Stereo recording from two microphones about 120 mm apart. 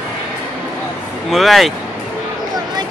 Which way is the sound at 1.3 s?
Centre (ahead or behind).